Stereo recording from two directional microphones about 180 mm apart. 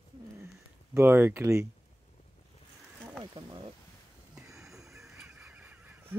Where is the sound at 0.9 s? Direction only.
10° right (ahead or behind).